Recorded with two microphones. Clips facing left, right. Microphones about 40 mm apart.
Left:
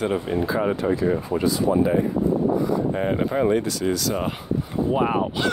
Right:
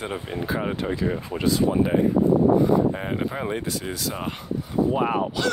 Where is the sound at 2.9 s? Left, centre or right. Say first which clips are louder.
Left 5 dB; centre.